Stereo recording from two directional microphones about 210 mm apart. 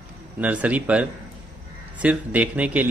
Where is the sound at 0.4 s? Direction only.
5° right (ahead or behind).